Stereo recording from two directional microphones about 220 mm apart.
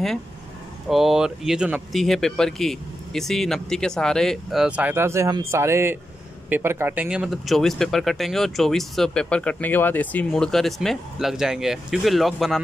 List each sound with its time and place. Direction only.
0.8 s speech: centre (ahead or behind)